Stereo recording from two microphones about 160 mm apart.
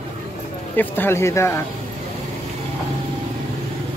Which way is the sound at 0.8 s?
15° left (ahead or behind).